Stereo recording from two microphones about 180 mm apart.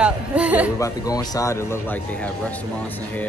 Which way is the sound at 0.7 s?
20° left (ahead or behind).